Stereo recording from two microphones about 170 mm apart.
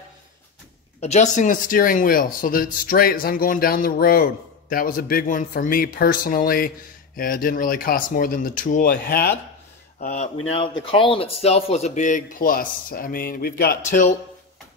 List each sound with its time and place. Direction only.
1.0 s speech: 45° left (ahead or behind); by 9.3 s 65° left (ahead or behind)
9.9 s speech: 50° left (ahead or behind)
10.5 s speech: 30° left (ahead or behind); by 13.7 s 65° left (ahead or behind)
13.8 s speech: 45° left (ahead or behind)